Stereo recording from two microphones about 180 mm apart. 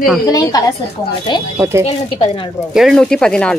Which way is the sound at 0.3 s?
20° left (ahead or behind).